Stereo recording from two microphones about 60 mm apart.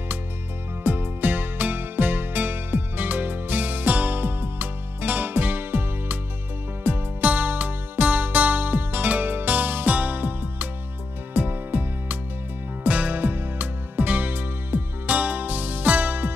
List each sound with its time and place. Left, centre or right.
0.8 s music: right